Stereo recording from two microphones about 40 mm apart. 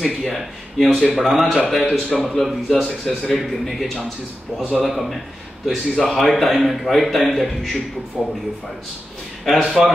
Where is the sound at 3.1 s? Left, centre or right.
Centre.